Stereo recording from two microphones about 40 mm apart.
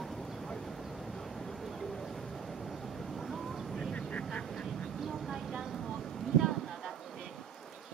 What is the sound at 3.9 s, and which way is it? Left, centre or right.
Vehicle, left.